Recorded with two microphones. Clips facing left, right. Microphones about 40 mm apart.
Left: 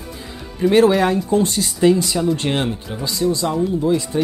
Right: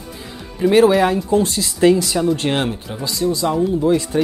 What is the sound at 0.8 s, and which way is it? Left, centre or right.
Speech, centre.